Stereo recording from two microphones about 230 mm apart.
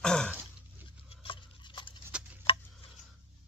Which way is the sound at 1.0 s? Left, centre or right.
Left.